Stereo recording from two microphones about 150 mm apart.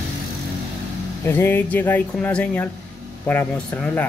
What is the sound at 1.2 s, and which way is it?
Speech, 15° left (ahead or behind).